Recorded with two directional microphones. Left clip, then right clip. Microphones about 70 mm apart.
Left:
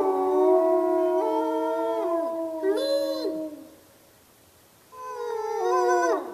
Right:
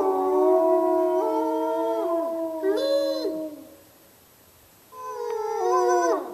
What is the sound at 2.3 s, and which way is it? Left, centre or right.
Howl, centre.